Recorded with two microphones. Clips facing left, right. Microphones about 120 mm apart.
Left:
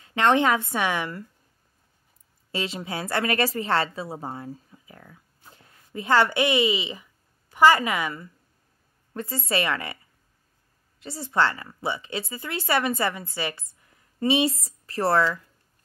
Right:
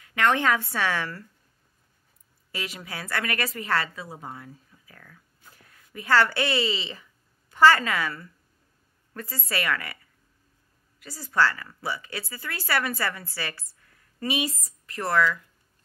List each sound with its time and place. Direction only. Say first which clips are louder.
0.0 s speech: left 3 dB; 25° left (ahead or behind)
2.5 s a woman's voice: left 6 dB; 25° left (ahead or behind)
11.0 s speech: left 1 dB; 25° left (ahead or behind)